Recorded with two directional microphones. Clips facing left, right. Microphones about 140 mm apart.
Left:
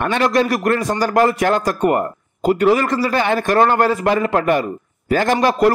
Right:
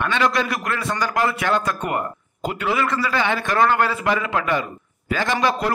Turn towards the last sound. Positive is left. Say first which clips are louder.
# left 6 dB
turn(degrees=45)  # may be behind; listen again after turning